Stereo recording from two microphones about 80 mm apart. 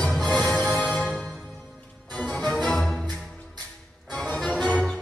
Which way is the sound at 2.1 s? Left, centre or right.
Centre.